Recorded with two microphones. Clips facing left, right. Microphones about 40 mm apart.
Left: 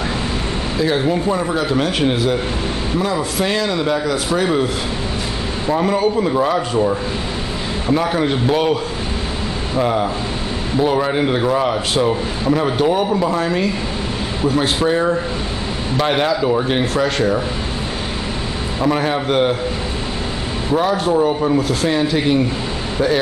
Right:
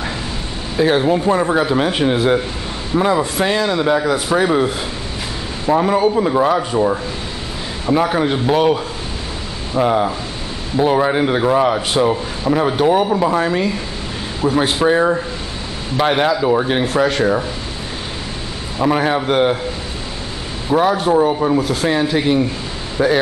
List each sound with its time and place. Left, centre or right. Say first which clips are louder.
0.7 s a man's voice: right 4 dB; right; by 4.6 s centre
5.7 s a man's voice: right 3 dB; centre
9.8 s a man's voice: right 3 dB; centre
18.8 s a man's voice: right 2 dB; centre
20.7 s a man's voice: right 2 dB; centre
23.0 s a man's voice: right 2 dB; centre